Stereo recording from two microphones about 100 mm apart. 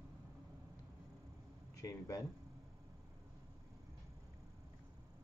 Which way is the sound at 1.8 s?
35° left (ahead or behind).